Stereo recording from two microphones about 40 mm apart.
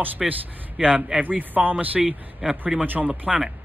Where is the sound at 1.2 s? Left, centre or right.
Right.